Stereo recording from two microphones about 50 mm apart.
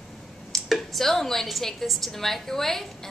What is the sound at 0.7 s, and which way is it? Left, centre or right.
A woman's voice, centre.